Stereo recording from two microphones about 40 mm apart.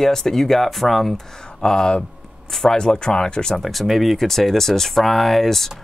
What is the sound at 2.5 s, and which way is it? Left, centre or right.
Speech, centre.